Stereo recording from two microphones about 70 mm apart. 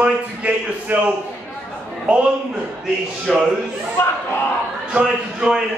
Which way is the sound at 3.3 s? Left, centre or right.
Centre.